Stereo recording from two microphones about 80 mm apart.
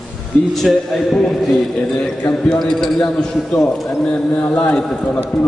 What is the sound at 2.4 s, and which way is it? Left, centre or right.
A man's voice, centre.